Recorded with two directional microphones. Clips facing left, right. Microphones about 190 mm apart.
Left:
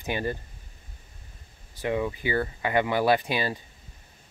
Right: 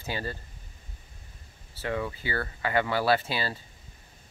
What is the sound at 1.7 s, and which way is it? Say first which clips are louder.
Speech: left 4 dB; 15° left (ahead or behind).